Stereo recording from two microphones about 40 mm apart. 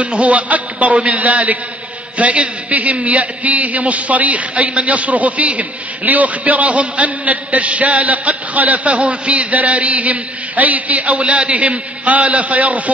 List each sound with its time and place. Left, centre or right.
0.0 s a man's voice: right